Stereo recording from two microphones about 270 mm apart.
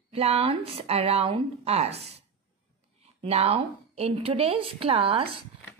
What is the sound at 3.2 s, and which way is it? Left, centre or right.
A woman's voice, right.